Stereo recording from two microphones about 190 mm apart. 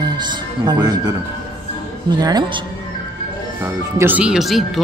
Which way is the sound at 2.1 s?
20° right (ahead or behind).